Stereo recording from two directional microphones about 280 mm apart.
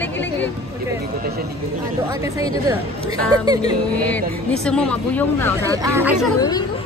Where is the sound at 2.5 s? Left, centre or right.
Centre.